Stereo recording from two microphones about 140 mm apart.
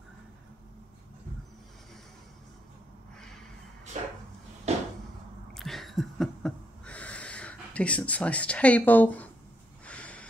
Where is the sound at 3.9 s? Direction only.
55° right (ahead or behind).